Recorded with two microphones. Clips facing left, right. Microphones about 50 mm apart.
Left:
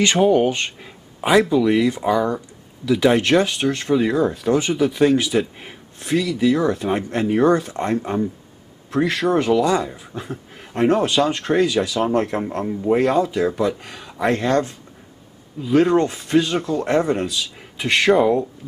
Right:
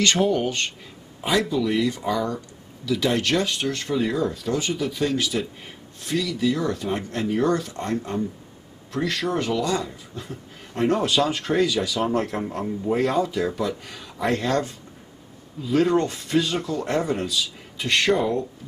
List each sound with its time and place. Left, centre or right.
0.0 s a man's voice: centre
3.5 s a man's voice: centre
9.8 s speech: left
10.3 s speech: centre
11.5 s a man's voice: left
11.9 s speech: centre
13.9 s a sound: centre
14.3 s speech: centre
15.6 s speech: centre